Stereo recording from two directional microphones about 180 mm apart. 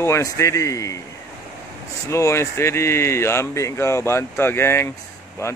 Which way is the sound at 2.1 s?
15° left (ahead or behind).